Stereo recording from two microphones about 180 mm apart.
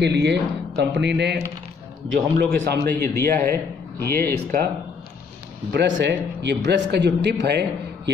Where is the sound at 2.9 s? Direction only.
10° left (ahead or behind).